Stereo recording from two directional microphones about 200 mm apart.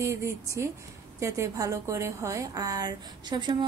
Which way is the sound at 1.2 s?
15° right (ahead or behind).